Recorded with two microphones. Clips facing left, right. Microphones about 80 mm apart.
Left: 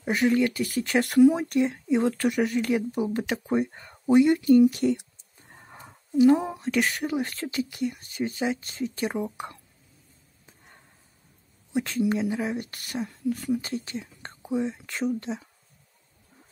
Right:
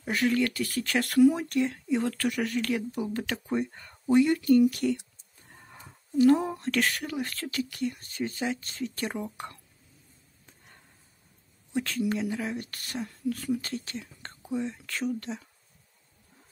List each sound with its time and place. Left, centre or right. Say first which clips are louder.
0.0 s speech: left 4 dB; centre
5.5 s a sound: left 3 dB; left
5.9 s speech: left 2 dB; centre
11.7 s speech: left 4 dB; centre